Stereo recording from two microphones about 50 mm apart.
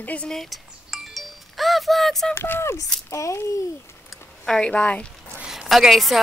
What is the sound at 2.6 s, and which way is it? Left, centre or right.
Speech, left.